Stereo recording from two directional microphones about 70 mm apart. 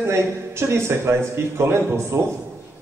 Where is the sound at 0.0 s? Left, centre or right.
Right.